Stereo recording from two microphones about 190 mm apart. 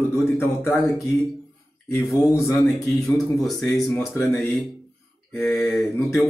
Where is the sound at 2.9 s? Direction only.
Centre (ahead or behind).